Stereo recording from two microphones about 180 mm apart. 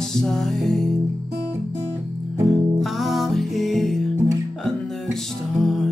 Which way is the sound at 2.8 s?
Centre (ahead or behind).